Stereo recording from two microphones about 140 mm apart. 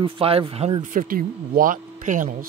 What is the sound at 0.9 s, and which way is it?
Speech, 85° right.